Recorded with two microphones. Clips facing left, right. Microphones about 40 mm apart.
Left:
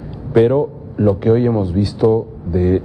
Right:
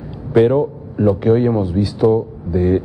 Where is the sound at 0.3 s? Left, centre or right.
Centre.